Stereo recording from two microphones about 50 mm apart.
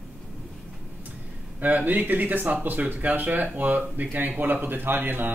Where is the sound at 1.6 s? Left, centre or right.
Right.